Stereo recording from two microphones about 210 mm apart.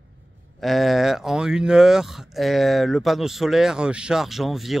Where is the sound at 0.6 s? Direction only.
Centre (ahead or behind).